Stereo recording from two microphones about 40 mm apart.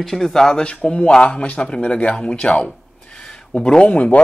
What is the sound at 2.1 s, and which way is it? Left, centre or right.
Speech, left.